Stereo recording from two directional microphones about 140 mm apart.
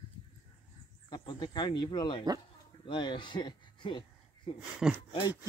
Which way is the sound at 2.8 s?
35° left (ahead or behind).